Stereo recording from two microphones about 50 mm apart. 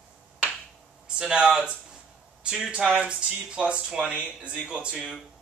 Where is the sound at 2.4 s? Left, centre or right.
Centre.